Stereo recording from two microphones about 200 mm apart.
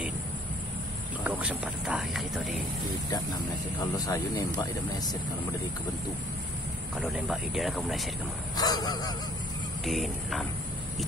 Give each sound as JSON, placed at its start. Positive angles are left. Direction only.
{"t": 1.2, "sound": "speech", "side_deg": -5}
{"t": 3.9, "sound": "speech", "side_deg": 20}
{"t": 7.0, "sound": "speech", "side_deg": 0}
{"t": 8.5, "sound": "a sound", "side_deg": 20}
{"t": 9.8, "sound": "speech", "side_deg": 0}